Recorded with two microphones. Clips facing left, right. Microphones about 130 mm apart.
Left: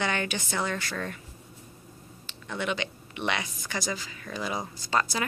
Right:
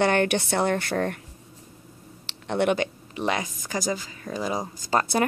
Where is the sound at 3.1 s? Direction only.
35° right (ahead or behind).